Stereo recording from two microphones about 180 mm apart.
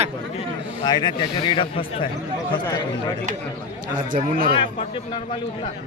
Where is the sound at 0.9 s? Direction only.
25° left (ahead or behind).